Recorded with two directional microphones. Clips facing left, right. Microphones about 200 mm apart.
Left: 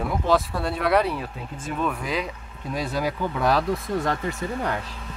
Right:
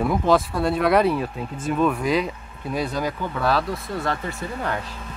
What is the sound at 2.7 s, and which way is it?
Speech, centre (ahead or behind).